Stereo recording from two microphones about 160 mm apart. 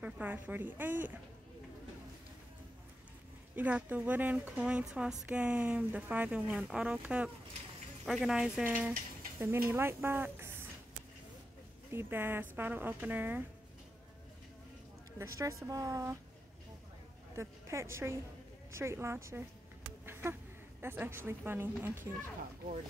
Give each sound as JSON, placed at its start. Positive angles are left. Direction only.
{"t": 0.0, "sound": "a woman's voice", "side_deg": -10}
{"t": 3.5, "sound": "a woman's voice", "side_deg": -10}
{"t": 11.9, "sound": "a woman's voice", "side_deg": -15}
{"t": 15.1, "sound": "speech", "side_deg": -15}
{"t": 17.4, "sound": "a woman's voice", "side_deg": -15}
{"t": 20.1, "sound": "a sound", "side_deg": -15}
{"t": 20.8, "sound": "a woman's voice", "side_deg": -15}